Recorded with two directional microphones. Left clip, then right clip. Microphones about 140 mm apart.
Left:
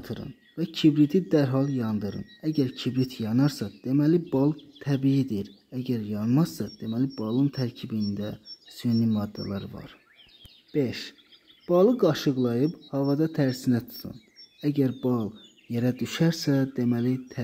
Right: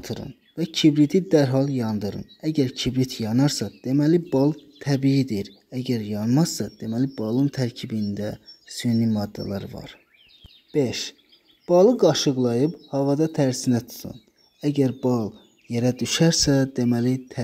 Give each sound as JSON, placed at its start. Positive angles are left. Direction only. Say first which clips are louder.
{"t": 0.0, "sound": "speech", "louder": "right 5 dB", "side_deg": -25}